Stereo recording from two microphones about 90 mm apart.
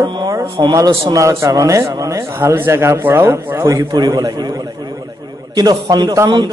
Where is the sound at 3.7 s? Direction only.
45° right (ahead or behind).